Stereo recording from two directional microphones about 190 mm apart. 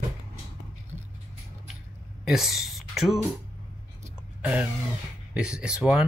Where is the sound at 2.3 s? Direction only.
Centre (ahead or behind).